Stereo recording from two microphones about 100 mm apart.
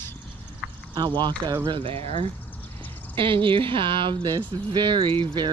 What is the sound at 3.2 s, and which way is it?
Speech, 55° right (ahead or behind).